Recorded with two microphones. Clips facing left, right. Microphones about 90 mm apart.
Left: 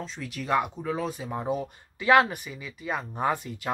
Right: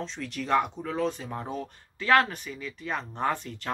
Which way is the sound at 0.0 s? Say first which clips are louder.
Right 1 dB; 5° left (ahead or behind).